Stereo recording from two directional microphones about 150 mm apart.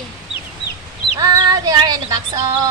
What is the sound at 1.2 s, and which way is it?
Music, 25° right (ahead or behind).